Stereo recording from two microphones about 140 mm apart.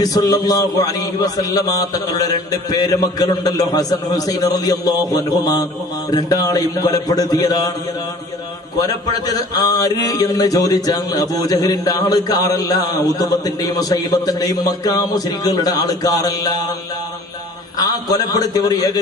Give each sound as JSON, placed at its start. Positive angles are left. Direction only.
{"t": 0.0, "sound": "a man's voice", "side_deg": 25}
{"t": 9.0, "sound": "a man's voice", "side_deg": 25}
{"t": 17.7, "sound": "a man's voice", "side_deg": 25}